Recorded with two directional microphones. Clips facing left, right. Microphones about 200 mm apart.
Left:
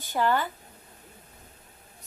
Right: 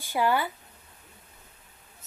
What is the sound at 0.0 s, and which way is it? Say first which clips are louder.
Speech: even; 10° right (ahead or behind).